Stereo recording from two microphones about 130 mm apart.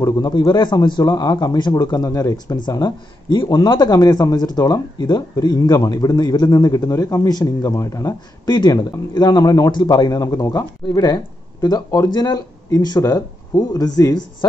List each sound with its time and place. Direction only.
0.0 s a man's voice: 30° left (ahead or behind)